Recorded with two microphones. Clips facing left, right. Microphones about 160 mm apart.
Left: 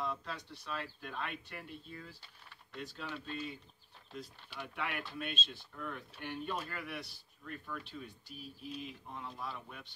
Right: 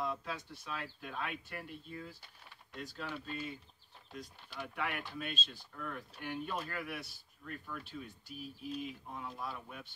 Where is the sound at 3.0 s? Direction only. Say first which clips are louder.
Right 1 dB; 5° right (ahead or behind).